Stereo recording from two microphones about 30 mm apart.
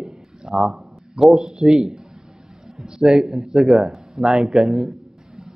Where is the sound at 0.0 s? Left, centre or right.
Centre.